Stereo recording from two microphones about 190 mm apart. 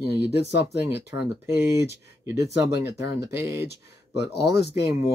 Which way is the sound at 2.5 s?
60° left (ahead or behind).